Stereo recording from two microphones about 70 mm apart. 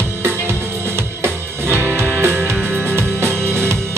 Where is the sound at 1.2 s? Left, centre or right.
Right.